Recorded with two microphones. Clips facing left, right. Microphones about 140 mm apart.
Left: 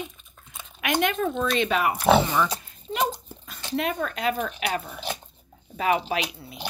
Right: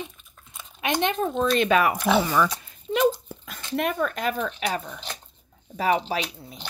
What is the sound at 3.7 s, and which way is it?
Speech, 50° right (ahead or behind).